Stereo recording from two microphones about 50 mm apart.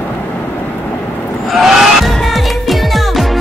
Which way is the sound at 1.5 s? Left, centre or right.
Centre.